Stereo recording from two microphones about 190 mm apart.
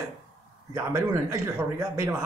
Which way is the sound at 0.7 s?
15° right (ahead or behind).